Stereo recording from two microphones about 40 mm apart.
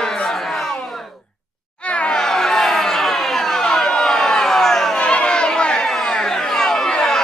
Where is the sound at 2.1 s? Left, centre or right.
Centre.